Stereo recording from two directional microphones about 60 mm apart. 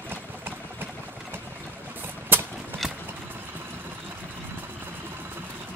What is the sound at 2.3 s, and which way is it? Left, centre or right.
Clip-clop, right.